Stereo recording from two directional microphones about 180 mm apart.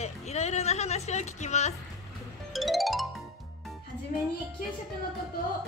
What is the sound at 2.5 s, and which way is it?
Music, centre (ahead or behind).